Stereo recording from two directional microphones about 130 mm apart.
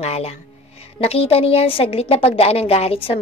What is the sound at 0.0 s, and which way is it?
A woman's voice, 55° left (ahead or behind).